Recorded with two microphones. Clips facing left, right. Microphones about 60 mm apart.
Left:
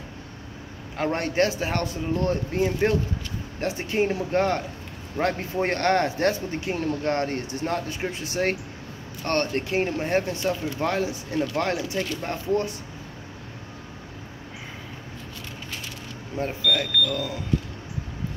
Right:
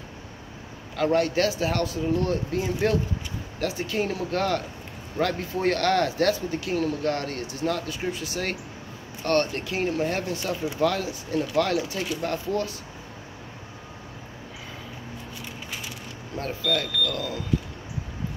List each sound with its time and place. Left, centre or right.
0.9 s speech: left
16.3 s speech: left